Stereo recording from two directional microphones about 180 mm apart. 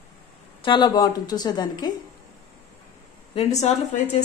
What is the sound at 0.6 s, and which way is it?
A woman's voice, 25° left (ahead or behind).